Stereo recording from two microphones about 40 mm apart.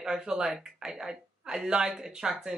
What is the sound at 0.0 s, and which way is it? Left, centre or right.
A woman's voice, centre.